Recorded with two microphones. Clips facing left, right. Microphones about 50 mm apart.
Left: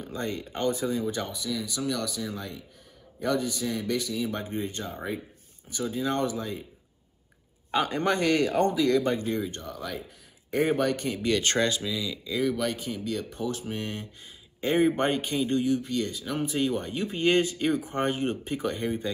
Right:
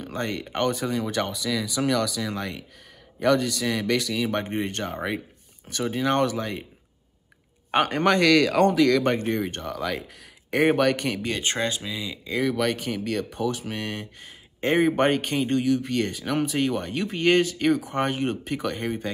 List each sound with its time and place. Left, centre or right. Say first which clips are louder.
0.0 s speech: right 3 dB; right
3.2 s speech: right 6 dB; right
7.7 s speech: right 5 dB; right
9.6 s speech: right 6 dB; right
10.6 s speech: right 4 dB; right
10.9 s speech: right 5 dB; right
11.2 s speech: left 5 dB; right
12.4 s speech: right 5 dB; right
13.7 s speech: right 2 dB; right
15.8 s speech: right 4 dB; right
16.5 s speech: right 2 dB; right